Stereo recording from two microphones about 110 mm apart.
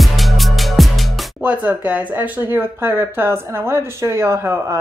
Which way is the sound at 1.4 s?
15° right (ahead or behind).